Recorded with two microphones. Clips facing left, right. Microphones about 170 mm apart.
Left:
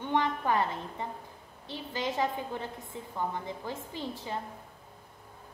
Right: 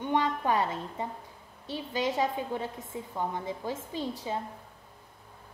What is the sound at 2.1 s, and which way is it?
A woman's voice, 15° right (ahead or behind).